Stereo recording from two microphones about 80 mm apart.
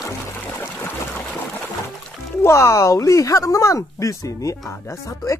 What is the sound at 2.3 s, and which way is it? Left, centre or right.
Speech, left.